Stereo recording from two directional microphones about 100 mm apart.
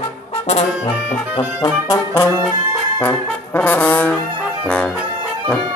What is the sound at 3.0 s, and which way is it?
Brass instrument, 20° left (ahead or behind).